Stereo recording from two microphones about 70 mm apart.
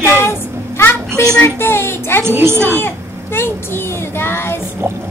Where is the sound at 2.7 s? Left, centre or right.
Left.